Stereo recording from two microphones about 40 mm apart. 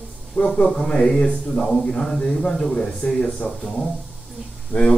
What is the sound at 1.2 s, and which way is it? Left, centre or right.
Speech, left.